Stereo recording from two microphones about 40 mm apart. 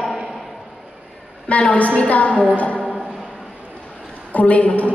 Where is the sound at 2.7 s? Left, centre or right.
Centre.